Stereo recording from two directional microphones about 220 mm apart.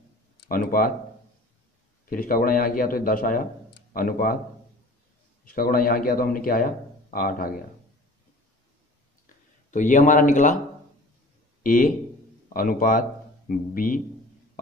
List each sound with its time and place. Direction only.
0.5 s a man's voice: 40° left (ahead or behind)
2.0 s a man's voice: 40° left (ahead or behind)
5.5 s a man's voice: 40° left (ahead or behind)
9.7 s a man's voice: 35° left (ahead or behind)
11.6 s a man's voice: 40° left (ahead or behind)